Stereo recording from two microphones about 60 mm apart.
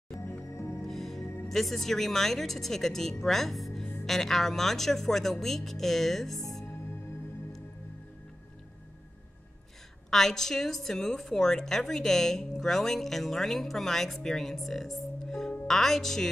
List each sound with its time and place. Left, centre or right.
0.2 s music: left
0.8 s music: centre
1.2 s music: left
1.5 s speech: centre
10.0 s a woman's voice: centre